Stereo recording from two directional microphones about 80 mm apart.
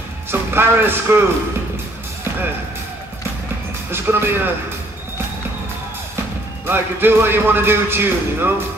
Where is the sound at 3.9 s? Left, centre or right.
Right.